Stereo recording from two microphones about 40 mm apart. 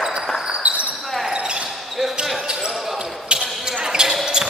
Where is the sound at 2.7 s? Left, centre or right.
Centre.